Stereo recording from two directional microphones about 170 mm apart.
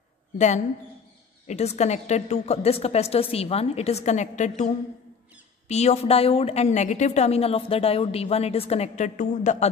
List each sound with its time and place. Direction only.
1.5 s a woman's voice: 40° left (ahead or behind)